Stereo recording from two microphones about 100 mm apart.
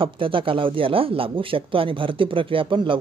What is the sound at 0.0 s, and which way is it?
Speech, 60° right (ahead or behind).